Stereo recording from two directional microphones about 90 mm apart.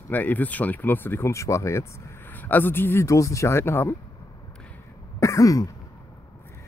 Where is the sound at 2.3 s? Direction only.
20° left (ahead or behind).